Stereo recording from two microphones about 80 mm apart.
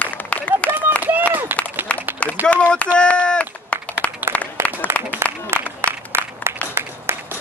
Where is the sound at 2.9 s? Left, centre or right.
Centre.